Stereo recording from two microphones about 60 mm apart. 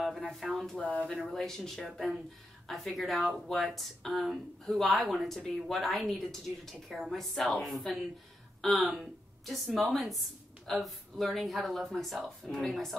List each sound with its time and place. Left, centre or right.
0.0 s a sound: centre
0.7 s speech: left
1.3 s a woman's voice: centre